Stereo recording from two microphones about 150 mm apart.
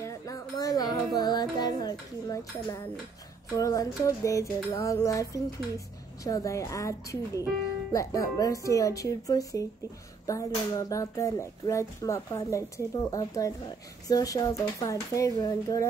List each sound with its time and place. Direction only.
0.0 s music: 25° left (ahead or behind)
3.5 s speech: 20° left (ahead or behind)
6.2 s speech: 20° left (ahead or behind)